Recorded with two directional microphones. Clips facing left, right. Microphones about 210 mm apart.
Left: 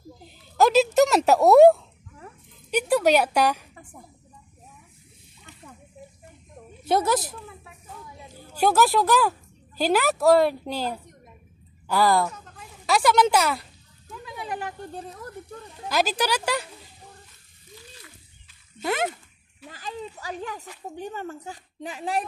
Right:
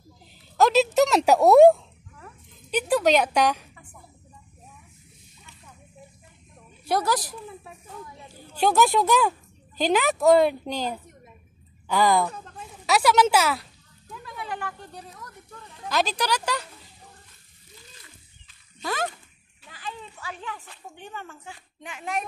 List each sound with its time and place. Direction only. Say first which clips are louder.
0.6 s a woman's voice: left 1 dB; centre (ahead or behind)
6.8 s a woman's voice: left 2 dB; 25° left (ahead or behind)
8.5 s a woman's voice: even; 5° left (ahead or behind)
11.9 s a woman's voice: even; 5° left (ahead or behind)
12.3 s a sound: right 2 dB; 35° right (ahead or behind)
12.8 s a woman's voice: even; 5° right (ahead or behind)
14.3 s speech: left 2 dB; 25° left (ahead or behind)
15.2 s a sound: left 7 dB; 30° left (ahead or behind)
15.9 s speech: left 1 dB; 5° left (ahead or behind)
18.8 s speech: left 3 dB; 25° left (ahead or behind)
19.7 s a child's voice: left 3 dB; 40° left (ahead or behind)